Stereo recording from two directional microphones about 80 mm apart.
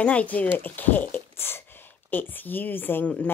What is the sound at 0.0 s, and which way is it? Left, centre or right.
Speech, centre.